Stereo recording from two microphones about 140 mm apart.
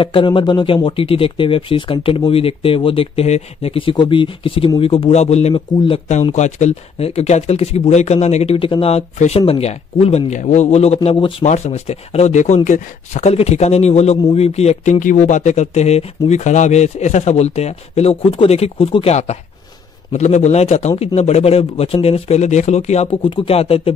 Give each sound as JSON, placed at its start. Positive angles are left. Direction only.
{"t": 0.0, "sound": "speech", "side_deg": 35}
{"t": 11.1, "sound": "speech", "side_deg": 40}
{"t": 11.4, "sound": "speech", "side_deg": 55}